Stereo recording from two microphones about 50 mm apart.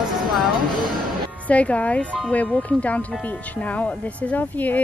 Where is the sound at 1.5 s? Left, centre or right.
Left.